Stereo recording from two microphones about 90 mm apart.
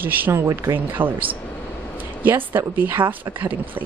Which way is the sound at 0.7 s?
20° right (ahead or behind).